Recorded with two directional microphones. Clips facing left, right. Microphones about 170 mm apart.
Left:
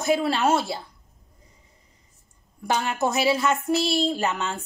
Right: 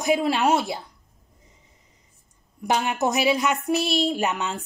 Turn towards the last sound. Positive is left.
turn(degrees=-15)  # may be behind; listen again after turning